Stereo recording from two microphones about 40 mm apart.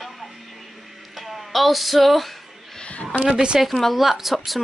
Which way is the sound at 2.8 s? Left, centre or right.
Left.